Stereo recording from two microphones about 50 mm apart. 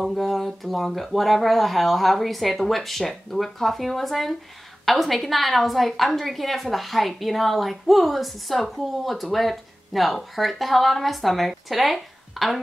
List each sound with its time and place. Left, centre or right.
0.0 s a woman's voice: centre